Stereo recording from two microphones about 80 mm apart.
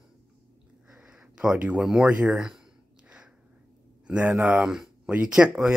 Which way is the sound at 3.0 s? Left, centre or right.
Centre.